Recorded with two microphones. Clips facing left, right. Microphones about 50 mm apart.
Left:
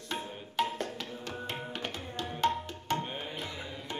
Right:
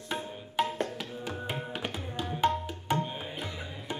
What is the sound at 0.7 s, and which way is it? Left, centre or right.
Music, centre.